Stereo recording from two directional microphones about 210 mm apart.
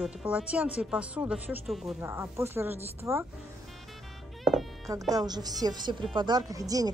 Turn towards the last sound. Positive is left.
turn(degrees=-15)  # may be behind; listen again after turning